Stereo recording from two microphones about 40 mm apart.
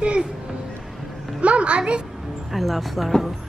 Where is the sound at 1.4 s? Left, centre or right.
Right.